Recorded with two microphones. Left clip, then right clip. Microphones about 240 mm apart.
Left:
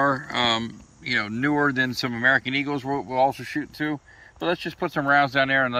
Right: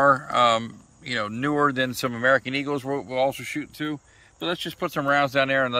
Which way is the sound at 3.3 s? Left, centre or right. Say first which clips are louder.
Left 1 dB; centre.